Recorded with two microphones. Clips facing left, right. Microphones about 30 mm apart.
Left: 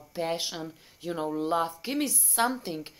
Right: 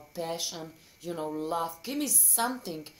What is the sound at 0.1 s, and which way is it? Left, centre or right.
Speech, left.